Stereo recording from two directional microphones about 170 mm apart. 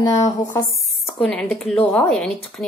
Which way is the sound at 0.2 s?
20° left (ahead or behind).